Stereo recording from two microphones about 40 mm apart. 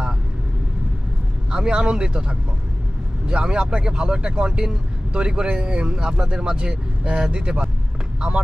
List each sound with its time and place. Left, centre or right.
1.5 s speech: right